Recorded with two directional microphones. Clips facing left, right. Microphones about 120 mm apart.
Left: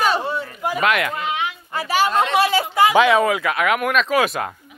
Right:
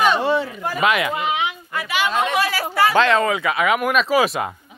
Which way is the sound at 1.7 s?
35° left (ahead or behind).